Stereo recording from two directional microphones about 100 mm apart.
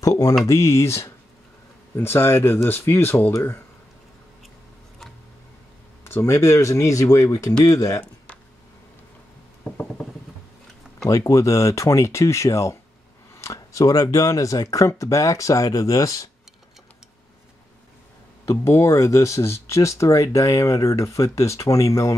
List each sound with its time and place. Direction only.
0.0 s speech: 35° left (ahead or behind)
6.0 s speech: 25° left (ahead or behind)
11.1 s speech: 35° left (ahead or behind)
18.4 s speech: 30° left (ahead or behind)